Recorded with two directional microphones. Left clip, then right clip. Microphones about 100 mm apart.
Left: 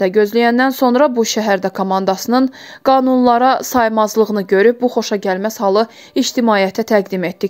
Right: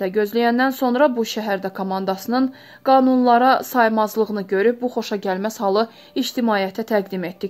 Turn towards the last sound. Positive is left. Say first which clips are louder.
# left 7 dB
turn(degrees=35)  # may be behind; listen again after turning